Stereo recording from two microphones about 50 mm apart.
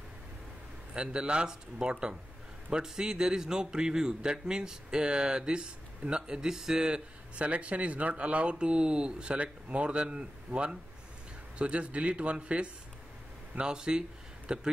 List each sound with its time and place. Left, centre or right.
0.9 s a man's voice: centre